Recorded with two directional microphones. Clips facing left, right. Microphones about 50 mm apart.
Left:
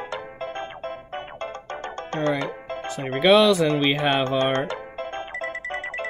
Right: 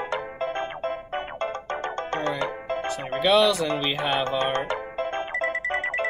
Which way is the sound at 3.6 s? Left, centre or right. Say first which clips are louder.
Left 5 dB; left.